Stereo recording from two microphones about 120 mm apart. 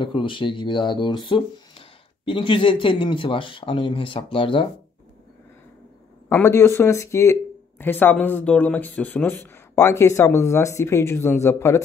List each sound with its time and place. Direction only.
0.0 s speech: 45° left (ahead or behind)
6.2 s speech: 20° left (ahead or behind)